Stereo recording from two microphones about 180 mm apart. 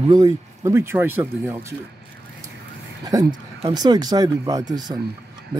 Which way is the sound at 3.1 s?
20° right (ahead or behind).